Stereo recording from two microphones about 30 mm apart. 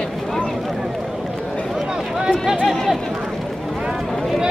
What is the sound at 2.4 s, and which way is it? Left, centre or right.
Run, centre.